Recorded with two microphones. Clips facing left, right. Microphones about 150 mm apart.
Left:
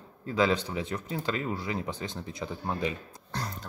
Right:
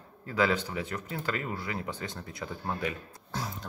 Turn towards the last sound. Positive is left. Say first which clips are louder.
# even
turn(degrees=0)  # may be behind; listen again after turning